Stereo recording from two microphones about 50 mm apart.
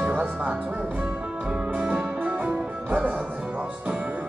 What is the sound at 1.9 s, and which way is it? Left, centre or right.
Music, right.